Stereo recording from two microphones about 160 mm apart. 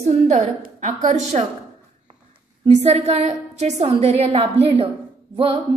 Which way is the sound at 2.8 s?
40° right (ahead or behind).